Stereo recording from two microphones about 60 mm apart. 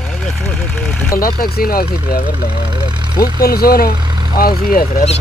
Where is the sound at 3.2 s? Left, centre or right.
Left.